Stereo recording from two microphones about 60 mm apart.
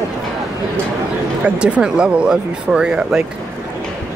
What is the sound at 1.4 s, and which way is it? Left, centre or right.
Speech, centre.